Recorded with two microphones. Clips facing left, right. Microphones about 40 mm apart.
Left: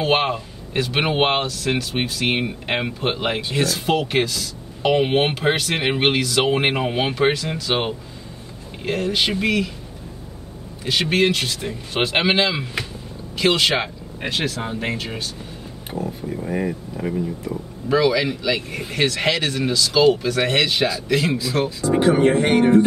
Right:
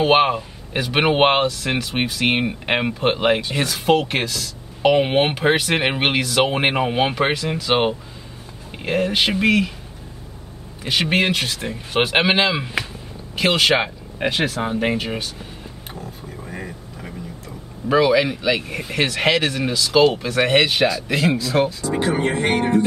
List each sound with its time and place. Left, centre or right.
0.0 s speech: centre
10.8 s speech: centre
16.0 s speech: centre
17.8 s speech: right
21.9 s speech: centre